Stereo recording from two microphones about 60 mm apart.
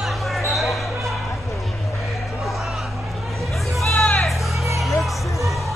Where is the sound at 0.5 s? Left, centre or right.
Centre.